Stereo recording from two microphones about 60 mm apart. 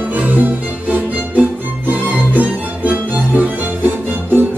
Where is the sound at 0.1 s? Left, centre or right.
Right.